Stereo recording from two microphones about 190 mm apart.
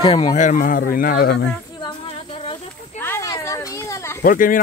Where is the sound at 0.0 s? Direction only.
25° left (ahead or behind).